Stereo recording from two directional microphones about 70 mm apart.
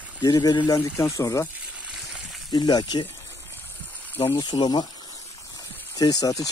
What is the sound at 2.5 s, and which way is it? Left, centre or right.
Speech, left.